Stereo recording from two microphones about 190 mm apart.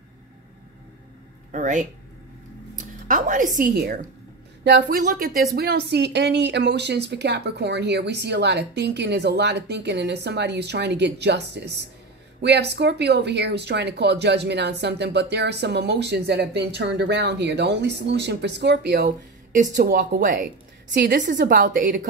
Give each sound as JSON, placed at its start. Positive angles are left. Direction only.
{"t": 1.5, "sound": "speech", "side_deg": -40}
{"t": 3.1, "sound": "a woman's voice", "side_deg": -45}
{"t": 3.7, "sound": "a woman's voice", "side_deg": -55}
{"t": 20.9, "sound": "speech", "side_deg": -60}
{"t": 21.2, "sound": "a woman's voice", "side_deg": -45}